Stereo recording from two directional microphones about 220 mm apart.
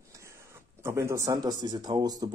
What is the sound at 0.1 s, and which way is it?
Speech, 15° right (ahead or behind).